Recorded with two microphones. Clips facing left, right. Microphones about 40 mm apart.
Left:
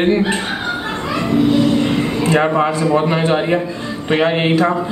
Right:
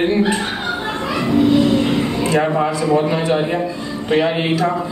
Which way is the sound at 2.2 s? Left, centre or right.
Left.